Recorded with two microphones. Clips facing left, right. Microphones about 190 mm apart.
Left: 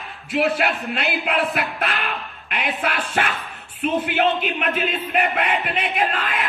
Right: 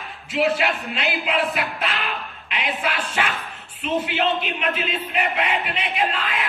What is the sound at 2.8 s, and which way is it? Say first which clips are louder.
Speech: left 2 dB; 55° left (ahead or behind).